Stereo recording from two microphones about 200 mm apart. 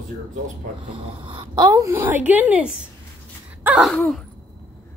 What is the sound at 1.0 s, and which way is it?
A woman's voice, 25° right (ahead or behind).